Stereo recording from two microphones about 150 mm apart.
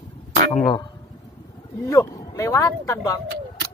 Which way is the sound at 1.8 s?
20° left (ahead or behind).